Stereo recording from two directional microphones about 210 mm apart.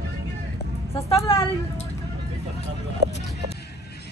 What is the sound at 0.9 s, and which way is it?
Speech, 15° left (ahead or behind).